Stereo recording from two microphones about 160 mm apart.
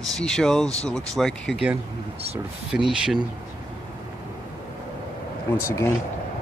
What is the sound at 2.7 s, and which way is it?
Speech, 5° right (ahead or behind).